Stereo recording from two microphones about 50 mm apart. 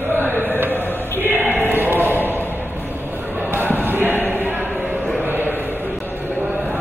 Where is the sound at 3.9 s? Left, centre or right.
Right.